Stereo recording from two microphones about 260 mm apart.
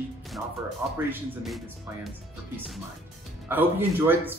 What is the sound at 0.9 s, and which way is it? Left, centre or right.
A man's voice, centre.